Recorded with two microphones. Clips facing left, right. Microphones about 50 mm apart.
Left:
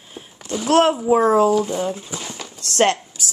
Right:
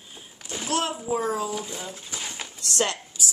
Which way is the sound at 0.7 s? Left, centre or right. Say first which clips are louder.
Left 12 dB; left.